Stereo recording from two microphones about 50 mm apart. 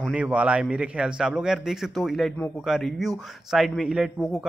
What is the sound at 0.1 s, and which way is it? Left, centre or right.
A man's voice, right.